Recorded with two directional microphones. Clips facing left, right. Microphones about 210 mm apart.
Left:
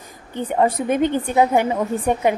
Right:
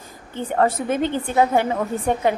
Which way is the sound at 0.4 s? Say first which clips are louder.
Left 1 dB; 15° left (ahead or behind).